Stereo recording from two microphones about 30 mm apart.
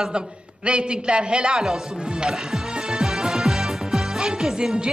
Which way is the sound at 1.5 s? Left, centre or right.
Centre.